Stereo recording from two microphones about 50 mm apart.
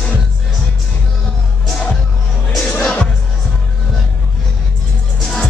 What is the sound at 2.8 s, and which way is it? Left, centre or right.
Music, centre.